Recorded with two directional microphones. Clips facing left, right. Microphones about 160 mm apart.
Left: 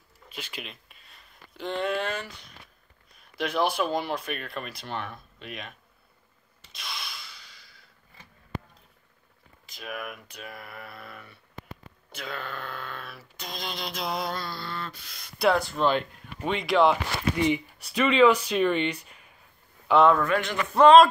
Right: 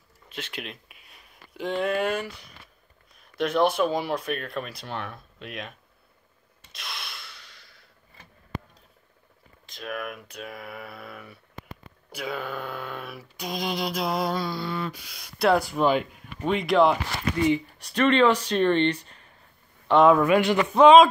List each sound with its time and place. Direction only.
0.3 s speech: centre (ahead or behind)
6.7 s snort: centre (ahead or behind)
9.7 s speech: 5° left (ahead or behind)
12.2 s a sound: 10° right (ahead or behind)
17.3 s speech: 20° left (ahead or behind)
17.8 s speech: 5° left (ahead or behind)
19.9 s speech: centre (ahead or behind)
20.2 s a sound: 15° right (ahead or behind)
20.7 s speech: centre (ahead or behind)